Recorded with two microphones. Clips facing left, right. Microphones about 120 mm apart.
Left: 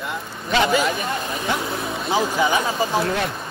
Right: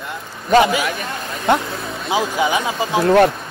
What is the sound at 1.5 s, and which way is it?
Speech, 55° right (ahead or behind).